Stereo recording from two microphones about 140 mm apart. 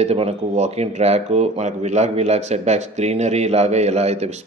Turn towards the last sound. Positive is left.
turn(degrees=-50)  # may be behind; listen again after turning